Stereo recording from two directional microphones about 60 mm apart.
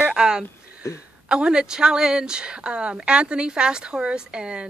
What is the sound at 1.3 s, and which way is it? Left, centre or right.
Speech, centre.